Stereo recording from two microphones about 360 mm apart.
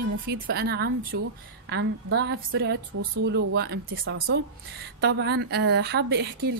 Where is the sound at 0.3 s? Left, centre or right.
Right.